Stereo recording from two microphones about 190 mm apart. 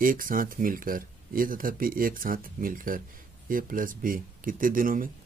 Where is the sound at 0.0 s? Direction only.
45° right (ahead or behind).